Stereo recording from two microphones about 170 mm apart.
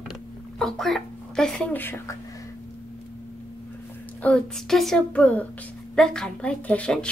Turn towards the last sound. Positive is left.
turn(degrees=5)  # may be behind; listen again after turning